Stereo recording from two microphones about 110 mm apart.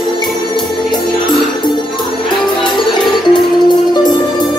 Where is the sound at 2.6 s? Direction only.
45° left (ahead or behind).